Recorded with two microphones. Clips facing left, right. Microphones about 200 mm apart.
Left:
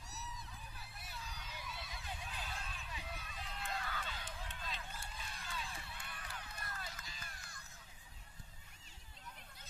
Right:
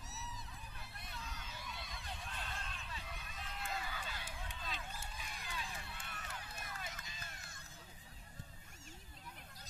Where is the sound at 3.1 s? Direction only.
Centre (ahead or behind); by 7.6 s 25° right (ahead or behind).